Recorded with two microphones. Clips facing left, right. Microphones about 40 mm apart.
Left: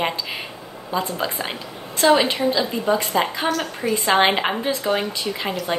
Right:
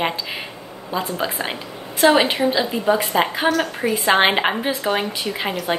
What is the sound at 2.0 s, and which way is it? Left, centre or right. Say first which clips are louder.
Speech: right 1 dB; right.